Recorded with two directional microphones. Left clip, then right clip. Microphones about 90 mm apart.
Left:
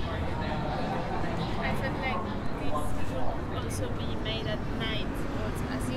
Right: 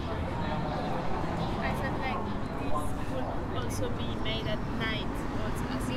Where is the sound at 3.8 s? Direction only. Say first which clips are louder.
Even; 15° right (ahead or behind).